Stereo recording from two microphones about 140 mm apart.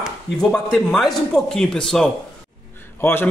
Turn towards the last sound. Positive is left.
turn(degrees=15)  # may be behind; listen again after turning